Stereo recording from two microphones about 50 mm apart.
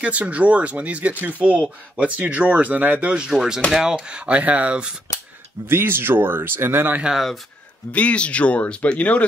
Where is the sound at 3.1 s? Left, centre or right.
Centre.